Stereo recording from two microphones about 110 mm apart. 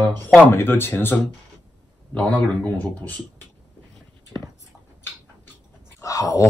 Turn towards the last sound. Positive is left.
turn(degrees=30)  # may be behind; listen again after turning